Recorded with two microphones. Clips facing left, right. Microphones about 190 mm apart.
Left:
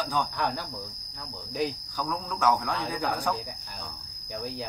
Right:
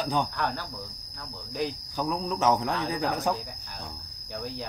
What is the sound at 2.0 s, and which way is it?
Speech, 20° right (ahead or behind).